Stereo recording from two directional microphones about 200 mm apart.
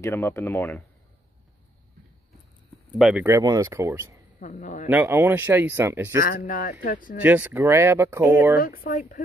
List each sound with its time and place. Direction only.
0.0 s speech: 10° left (ahead or behind)
3.0 s speech: 5° right (ahead or behind)
3.3 s speech: 15° right (ahead or behind)
4.4 s a man's voice: 40° left (ahead or behind)
4.8 s speech: 10° right (ahead or behind)
6.2 s speech: 45° left (ahead or behind)
7.2 s speech: 10° right (ahead or behind)
8.8 s speech: 45° left (ahead or behind)